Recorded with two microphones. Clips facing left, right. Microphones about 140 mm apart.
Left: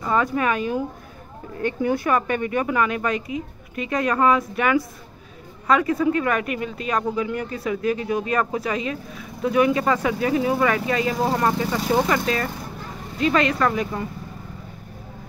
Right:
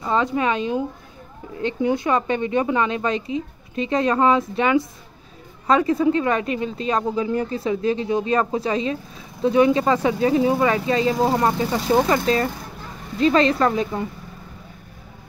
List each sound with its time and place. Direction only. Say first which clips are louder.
0.0 s speech: right 1 dB; 20° right (ahead or behind)